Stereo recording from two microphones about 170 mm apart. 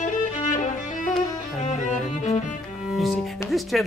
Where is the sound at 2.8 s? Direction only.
Centre (ahead or behind).